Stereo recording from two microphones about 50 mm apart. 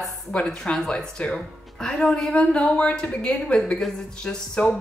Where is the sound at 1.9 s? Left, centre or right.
Centre.